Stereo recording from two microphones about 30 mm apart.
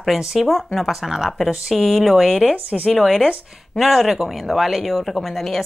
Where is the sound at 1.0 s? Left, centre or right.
Centre.